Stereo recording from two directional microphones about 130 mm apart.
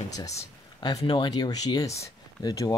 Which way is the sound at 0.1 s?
25° left (ahead or behind).